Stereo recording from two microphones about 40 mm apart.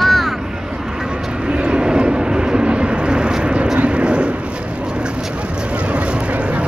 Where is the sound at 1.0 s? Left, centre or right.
Right.